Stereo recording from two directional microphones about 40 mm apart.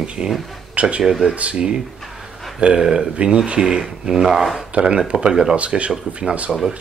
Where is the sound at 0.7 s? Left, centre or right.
Right.